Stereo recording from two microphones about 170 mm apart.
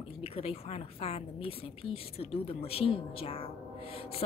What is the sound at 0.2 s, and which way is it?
A woman's voice, 35° left (ahead or behind).